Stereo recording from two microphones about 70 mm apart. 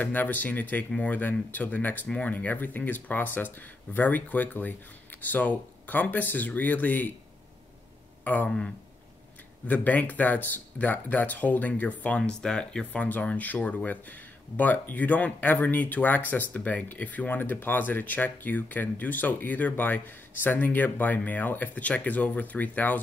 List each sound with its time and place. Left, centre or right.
0.0 s speech: left
8.2 s speech: left
8.5 s speech: centre
9.7 s speech: left
12.2 s speech: centre